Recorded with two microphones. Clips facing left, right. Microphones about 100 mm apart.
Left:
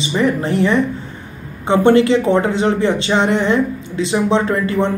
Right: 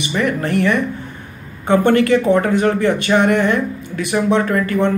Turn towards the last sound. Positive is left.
turn(degrees=20)  # may be behind; listen again after turning